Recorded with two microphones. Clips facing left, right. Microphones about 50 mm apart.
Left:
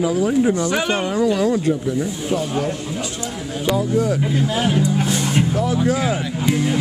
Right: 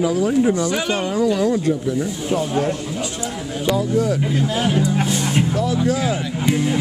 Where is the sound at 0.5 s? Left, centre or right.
Left.